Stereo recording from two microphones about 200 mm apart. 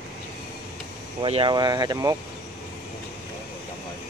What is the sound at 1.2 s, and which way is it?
Speech, 25° right (ahead or behind).